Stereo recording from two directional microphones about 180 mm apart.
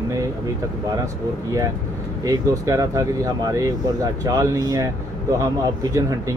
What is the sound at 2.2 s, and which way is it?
Speech, 20° right (ahead or behind).